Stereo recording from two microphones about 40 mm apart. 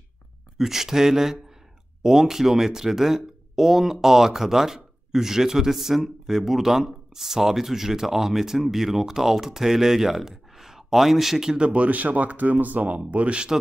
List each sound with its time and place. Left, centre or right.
0.6 s speech: centre
11.5 s speech: right
13.1 s speech: right